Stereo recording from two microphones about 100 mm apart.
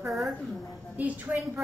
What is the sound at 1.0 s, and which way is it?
Speech, 15° right (ahead or behind).